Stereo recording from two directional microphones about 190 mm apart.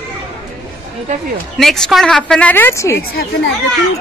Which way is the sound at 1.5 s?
Centre (ahead or behind).